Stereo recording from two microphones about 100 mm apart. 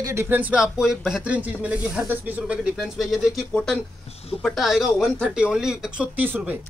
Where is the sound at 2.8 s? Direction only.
5° right (ahead or behind).